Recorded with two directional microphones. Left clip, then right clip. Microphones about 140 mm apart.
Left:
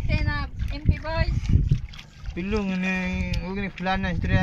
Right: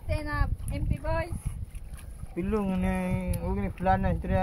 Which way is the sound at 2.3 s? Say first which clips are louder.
Left 2 dB; 40° left (ahead or behind).